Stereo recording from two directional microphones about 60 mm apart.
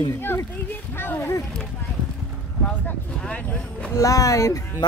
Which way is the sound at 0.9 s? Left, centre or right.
Left.